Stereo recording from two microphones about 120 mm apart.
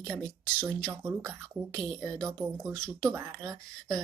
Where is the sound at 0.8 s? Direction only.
20° right (ahead or behind).